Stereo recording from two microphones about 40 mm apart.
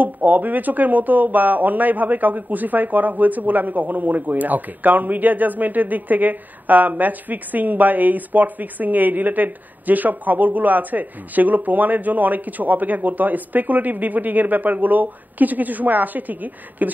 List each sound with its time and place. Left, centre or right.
0.0 s speech: right